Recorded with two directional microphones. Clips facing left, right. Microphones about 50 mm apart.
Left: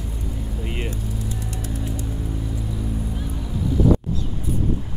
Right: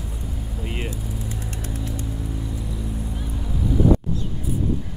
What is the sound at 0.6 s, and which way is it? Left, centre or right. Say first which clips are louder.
Vehicle: even; centre.